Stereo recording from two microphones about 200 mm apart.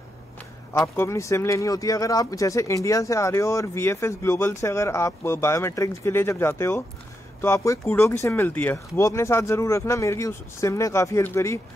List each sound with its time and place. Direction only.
0.9 s speech: 15° left (ahead or behind)